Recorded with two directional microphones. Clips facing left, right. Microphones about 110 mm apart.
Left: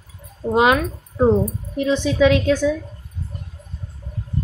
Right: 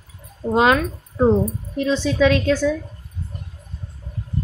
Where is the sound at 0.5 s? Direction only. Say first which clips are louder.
Even; 15° left (ahead or behind).